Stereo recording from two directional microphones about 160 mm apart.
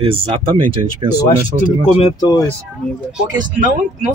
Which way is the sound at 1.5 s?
55° right (ahead or behind).